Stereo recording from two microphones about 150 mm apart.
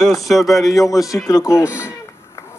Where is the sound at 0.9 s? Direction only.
20° left (ahead or behind).